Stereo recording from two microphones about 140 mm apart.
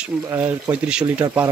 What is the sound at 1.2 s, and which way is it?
Speech, 20° right (ahead or behind).